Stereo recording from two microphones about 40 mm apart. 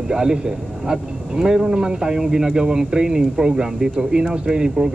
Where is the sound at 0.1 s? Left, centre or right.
Centre.